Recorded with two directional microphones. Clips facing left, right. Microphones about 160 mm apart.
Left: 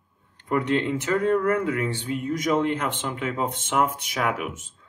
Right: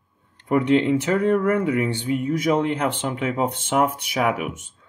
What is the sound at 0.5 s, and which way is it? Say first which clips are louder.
Speech: right 5 dB; 15° right (ahead or behind).